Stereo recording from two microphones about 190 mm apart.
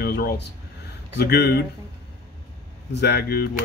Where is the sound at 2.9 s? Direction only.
60° left (ahead or behind).